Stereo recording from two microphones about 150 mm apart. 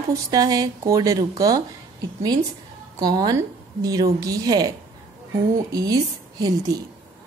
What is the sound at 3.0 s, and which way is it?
A woman's voice, 25° right (ahead or behind).